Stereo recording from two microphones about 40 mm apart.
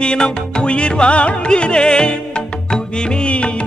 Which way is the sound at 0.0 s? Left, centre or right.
Left.